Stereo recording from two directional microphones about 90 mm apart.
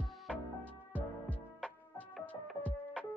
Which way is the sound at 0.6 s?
15° left (ahead or behind).